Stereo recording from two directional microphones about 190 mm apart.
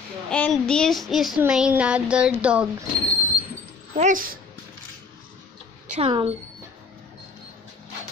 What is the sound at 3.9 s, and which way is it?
Speech, 45° right (ahead or behind).